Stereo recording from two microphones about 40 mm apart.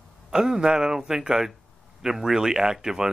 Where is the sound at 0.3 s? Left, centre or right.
Centre.